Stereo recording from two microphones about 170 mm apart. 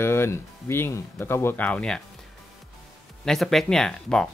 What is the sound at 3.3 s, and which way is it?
Speech, centre (ahead or behind).